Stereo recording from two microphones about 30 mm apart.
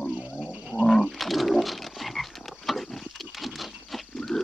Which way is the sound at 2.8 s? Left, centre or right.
Centre.